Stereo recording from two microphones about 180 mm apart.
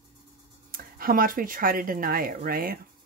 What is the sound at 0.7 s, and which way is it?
Speech, 50° right (ahead or behind).